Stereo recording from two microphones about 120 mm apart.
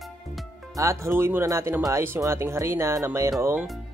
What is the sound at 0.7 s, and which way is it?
Speech, 25° right (ahead or behind).